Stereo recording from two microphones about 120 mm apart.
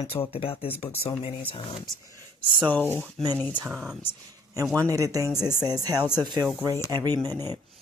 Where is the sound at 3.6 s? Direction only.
5° right (ahead or behind).